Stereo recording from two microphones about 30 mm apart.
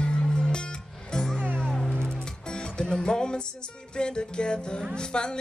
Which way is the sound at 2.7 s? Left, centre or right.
Left.